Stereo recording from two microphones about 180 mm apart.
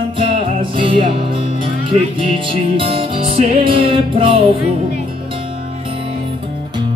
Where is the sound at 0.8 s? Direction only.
30° right (ahead or behind).